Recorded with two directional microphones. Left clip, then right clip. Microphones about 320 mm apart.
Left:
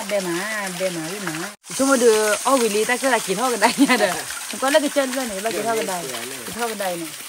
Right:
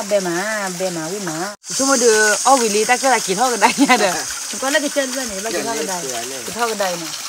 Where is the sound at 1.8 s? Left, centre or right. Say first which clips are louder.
Right 2 dB; centre.